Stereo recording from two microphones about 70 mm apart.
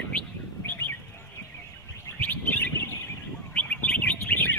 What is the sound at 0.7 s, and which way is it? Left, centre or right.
Bird, left.